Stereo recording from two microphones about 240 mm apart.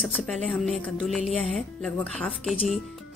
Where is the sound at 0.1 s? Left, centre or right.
Centre.